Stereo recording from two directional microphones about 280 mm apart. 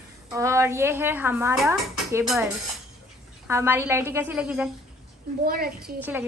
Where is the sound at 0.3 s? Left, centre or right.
Centre.